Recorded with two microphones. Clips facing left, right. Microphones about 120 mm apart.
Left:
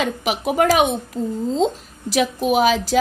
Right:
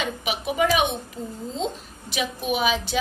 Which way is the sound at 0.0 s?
90° left.